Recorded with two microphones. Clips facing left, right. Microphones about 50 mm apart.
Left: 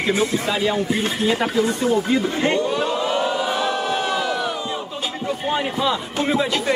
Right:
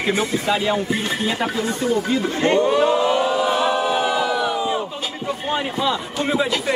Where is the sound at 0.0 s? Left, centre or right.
Centre.